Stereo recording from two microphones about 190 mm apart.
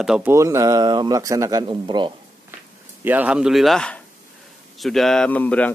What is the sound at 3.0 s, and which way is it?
Speech, 10° right (ahead or behind).